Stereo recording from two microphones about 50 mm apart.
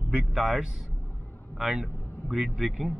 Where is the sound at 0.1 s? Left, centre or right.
Centre.